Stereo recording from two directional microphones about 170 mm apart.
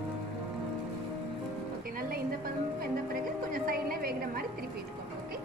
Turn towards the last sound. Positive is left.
turn(degrees=-60)  # may be behind; listen again after turning